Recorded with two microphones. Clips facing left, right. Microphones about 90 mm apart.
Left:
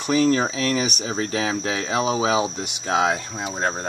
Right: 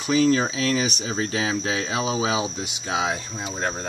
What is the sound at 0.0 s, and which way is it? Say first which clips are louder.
Speech: left 1 dB; 40° left (ahead or behind).